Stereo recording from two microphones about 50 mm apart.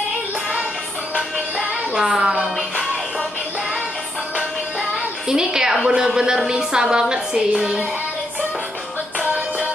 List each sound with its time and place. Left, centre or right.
2.0 s a woman's voice: centre
4.9 s a sound: centre
5.8 s speech: right
6.0 s a woman's voice: centre